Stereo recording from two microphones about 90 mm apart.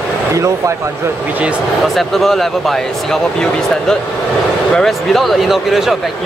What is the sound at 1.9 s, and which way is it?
Speech, centre (ahead or behind).